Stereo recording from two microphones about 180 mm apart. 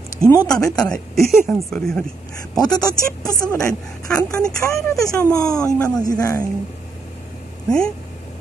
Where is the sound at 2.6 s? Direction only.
20° left (ahead or behind).